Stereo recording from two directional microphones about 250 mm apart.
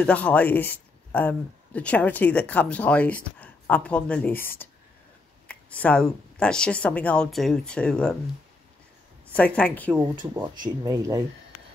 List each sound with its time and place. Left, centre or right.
0.0 s speech: centre
5.5 s speech: centre
9.6 s speech: centre
9.9 s speech: centre